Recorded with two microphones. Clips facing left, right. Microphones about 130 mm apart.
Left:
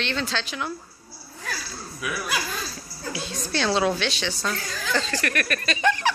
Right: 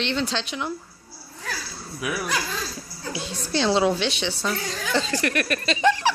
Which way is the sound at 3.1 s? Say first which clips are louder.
Right 1 dB; 25° right (ahead or behind).